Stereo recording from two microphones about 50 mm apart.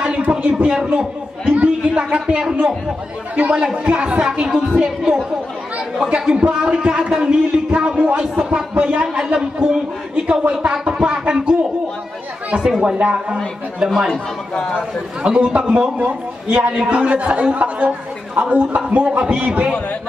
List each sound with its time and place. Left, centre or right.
0.0 s a sound: right
1.5 s speech: right
3.5 s speech: centre
9.0 s speech: centre
12.8 s speech: centre
13.8 s speech: centre
14.1 s speech: centre
14.8 s a man's voice: centre